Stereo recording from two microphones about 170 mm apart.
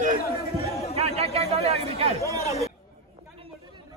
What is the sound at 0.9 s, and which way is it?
Chatter, 35° right (ahead or behind).